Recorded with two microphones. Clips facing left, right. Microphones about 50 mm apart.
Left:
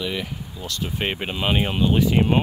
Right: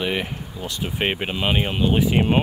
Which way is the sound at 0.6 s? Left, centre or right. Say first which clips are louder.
Right 2 dB; centre.